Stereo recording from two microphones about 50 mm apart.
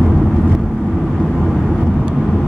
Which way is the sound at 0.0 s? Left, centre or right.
Centre.